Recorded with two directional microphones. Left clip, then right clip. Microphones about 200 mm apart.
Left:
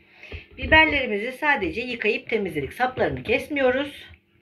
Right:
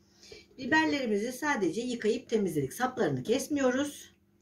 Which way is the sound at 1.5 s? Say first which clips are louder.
Left 8 dB; 30° right (ahead or behind).